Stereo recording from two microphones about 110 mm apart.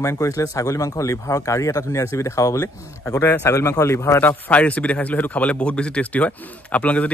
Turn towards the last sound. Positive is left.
turn(degrees=15)  # may be behind; listen again after turning